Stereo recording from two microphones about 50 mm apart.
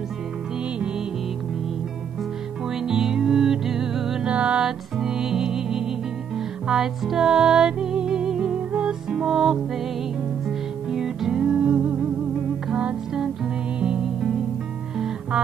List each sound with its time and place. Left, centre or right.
2.7 s music: centre
4.3 s music: right
4.6 s music: centre
10.9 s music: centre
11.4 s music: right
14.0 s music: centre